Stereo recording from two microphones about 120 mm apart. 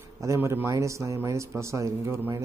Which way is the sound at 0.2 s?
25° right (ahead or behind).